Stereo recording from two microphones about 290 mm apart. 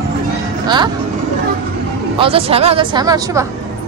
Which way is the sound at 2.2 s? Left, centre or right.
Centre.